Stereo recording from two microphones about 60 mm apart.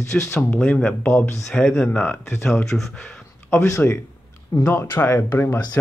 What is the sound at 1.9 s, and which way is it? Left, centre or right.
Speech, left.